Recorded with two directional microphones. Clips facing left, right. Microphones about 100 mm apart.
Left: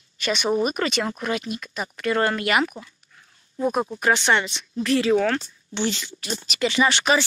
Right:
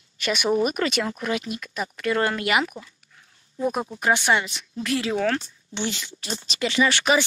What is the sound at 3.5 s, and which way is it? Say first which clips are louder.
Speech: left 2 dB; 25° left (ahead or behind).